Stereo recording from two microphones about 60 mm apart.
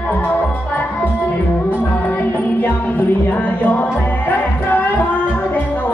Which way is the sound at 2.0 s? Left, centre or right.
Left.